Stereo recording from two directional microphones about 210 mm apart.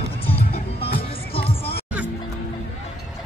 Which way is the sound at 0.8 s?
25° left (ahead or behind).